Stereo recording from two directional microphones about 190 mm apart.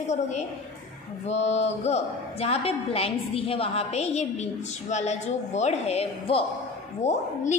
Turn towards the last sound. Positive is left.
turn(degrees=35)  # may be behind; listen again after turning